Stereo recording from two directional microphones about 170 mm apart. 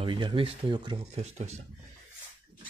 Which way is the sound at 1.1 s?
40° right (ahead or behind).